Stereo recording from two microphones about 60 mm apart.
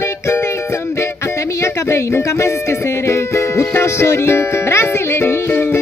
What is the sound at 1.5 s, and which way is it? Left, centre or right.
Music, left.